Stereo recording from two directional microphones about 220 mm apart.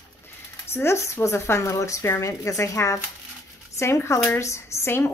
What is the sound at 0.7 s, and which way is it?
Speech, 10° left (ahead or behind).